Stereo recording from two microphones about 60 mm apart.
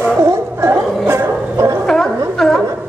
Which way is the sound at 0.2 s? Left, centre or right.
Right.